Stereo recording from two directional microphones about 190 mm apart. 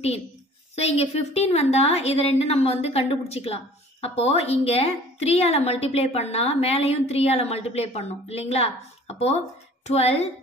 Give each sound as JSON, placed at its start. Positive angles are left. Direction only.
{"t": 0.7, "sound": "a woman's voice", "side_deg": 35}